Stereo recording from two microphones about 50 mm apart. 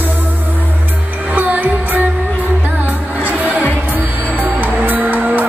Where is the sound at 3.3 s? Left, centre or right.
Right.